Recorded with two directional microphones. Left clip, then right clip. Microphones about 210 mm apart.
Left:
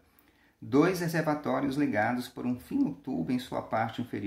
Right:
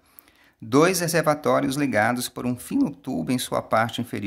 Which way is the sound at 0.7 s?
40° right (ahead or behind).